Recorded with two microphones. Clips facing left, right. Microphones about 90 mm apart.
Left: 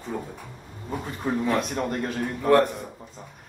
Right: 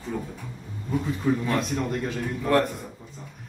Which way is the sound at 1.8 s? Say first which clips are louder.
Left 1 dB; 50° left (ahead or behind).